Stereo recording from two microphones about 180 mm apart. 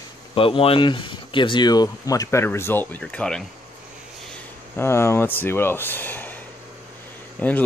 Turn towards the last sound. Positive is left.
turn(degrees=10)  # may be behind; listen again after turning